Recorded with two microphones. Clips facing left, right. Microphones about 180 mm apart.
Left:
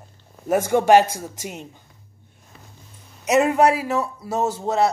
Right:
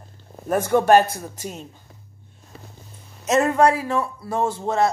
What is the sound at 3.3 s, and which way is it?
A man's voice, 15° left (ahead or behind).